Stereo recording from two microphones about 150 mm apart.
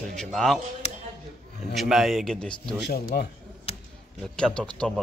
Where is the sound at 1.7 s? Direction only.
Centre (ahead or behind).